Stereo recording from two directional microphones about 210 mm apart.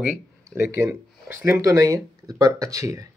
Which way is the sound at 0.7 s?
10° right (ahead or behind).